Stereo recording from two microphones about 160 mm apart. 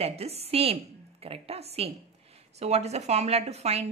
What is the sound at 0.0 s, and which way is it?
Speech, 40° right (ahead or behind).